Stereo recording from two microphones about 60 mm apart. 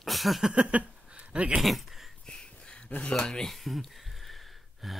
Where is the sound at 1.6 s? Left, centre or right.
Centre.